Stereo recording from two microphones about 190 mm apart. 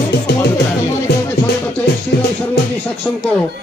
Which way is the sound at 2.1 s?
55° left (ahead or behind).